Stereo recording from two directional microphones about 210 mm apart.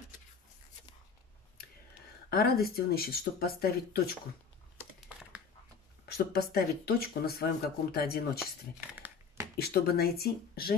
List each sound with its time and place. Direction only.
2.2 s speech: 45° left (ahead or behind)
6.0 s speech: 50° left (ahead or behind)
8.9 s crumpling: 10° right (ahead or behind)
9.6 s speech: 50° left (ahead or behind)